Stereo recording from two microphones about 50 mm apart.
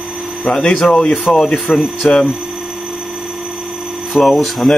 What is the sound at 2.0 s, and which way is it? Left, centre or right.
Speech, left.